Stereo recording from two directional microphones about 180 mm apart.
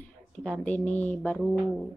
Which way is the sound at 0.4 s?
5° left (ahead or behind).